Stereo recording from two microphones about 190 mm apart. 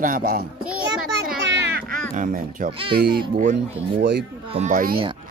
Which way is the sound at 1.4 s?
65° right (ahead or behind).